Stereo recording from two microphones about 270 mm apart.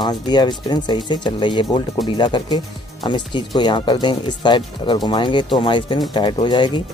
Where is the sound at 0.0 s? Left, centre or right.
Centre.